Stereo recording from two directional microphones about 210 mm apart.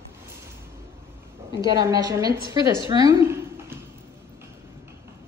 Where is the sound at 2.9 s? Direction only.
15° right (ahead or behind).